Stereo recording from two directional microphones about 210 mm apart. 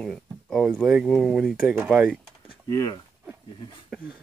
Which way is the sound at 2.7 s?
15° left (ahead or behind).